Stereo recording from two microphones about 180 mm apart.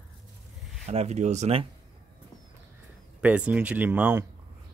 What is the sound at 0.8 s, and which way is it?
Speech, 35° right (ahead or behind).